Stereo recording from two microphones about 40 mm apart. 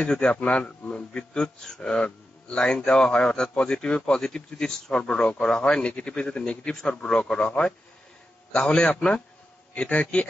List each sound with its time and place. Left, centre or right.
0.1 s a man's voice: left
5.7 s a man's voice: left
9.8 s a man's voice: left